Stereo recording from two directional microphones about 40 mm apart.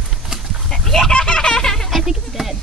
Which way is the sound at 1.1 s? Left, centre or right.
Left.